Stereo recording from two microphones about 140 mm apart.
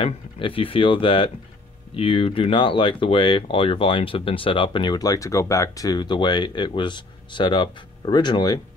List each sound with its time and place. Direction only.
0.0 s speech: 40° left (ahead or behind)